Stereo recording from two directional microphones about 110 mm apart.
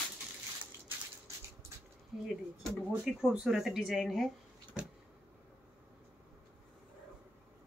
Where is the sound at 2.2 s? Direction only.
5° right (ahead or behind).